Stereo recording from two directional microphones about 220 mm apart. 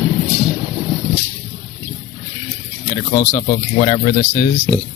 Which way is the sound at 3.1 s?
35° left (ahead or behind).